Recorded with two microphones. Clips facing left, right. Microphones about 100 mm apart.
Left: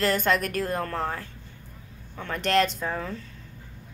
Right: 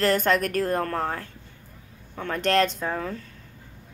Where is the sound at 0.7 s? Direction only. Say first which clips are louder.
Right 3 dB; 50° right (ahead or behind).